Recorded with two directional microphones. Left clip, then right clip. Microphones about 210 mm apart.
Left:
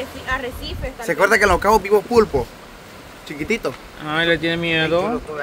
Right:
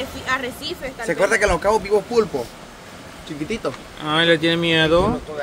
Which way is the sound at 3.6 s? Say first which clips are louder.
Left 1 dB; 45° left (ahead or behind).